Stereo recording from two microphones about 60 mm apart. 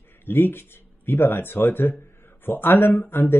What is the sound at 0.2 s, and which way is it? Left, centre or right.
Speech, left.